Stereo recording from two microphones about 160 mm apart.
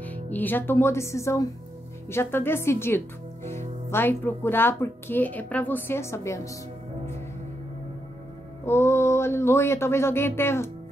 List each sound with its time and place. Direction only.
0.0 s speech: 10° left (ahead or behind)
8.6 s speech: 15° left (ahead or behind)